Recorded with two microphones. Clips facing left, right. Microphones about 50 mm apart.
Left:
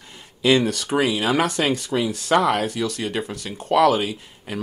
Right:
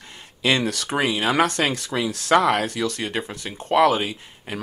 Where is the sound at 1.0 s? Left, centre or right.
Right.